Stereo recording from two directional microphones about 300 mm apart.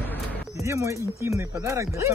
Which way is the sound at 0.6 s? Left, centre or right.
Centre.